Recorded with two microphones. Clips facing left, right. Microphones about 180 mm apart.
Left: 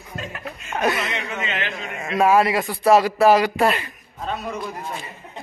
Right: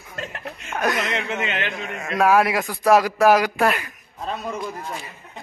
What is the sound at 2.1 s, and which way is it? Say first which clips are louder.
Speech: left 1 dB; centre (ahead or behind).